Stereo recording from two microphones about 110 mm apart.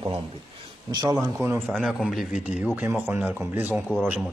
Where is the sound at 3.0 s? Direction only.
15° right (ahead or behind).